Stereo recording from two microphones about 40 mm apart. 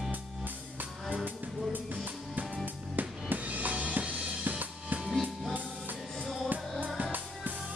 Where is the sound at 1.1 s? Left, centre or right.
Right.